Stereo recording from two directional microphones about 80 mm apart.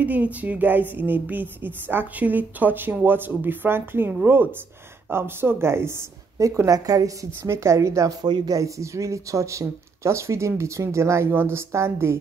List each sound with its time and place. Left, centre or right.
0.0 s a woman's voice: centre; by 7.1 s right
7.4 s speech: right